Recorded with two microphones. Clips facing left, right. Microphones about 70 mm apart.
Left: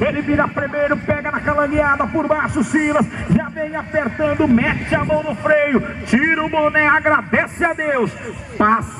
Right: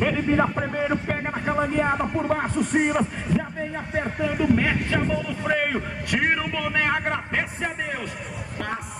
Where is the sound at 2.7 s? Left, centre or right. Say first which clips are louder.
Left 5 dB; left.